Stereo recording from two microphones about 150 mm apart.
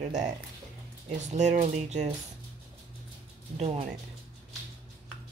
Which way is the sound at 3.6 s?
45° right (ahead or behind).